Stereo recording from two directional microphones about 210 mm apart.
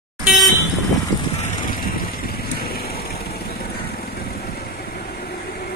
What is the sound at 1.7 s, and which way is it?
Vehicle, 45° left (ahead or behind).